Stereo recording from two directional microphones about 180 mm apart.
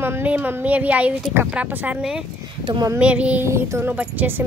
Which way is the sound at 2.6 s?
25° right (ahead or behind).